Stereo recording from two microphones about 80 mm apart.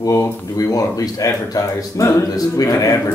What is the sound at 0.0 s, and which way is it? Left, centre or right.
Speech, left.